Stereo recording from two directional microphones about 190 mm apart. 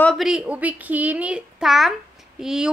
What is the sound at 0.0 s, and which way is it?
A woman's voice, centre (ahead or behind).